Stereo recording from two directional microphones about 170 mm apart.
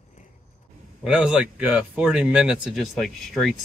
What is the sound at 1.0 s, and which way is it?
Speech, 5° right (ahead or behind).